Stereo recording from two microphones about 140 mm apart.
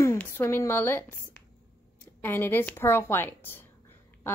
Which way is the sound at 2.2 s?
15° left (ahead or behind).